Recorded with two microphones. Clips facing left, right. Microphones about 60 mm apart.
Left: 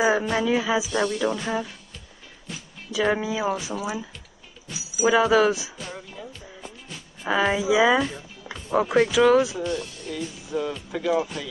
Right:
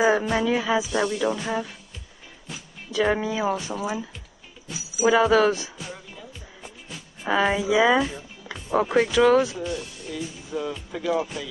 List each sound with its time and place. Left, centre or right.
0.0 s music: centre
0.9 s speech: centre
2.9 s speech: centre
5.0 s speech: centre
7.2 s speech: centre
7.6 s music: centre
8.5 s speech: centre
9.6 s speech: centre